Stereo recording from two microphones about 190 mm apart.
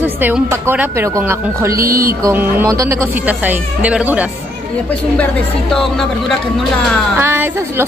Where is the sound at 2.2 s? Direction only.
15° right (ahead or behind).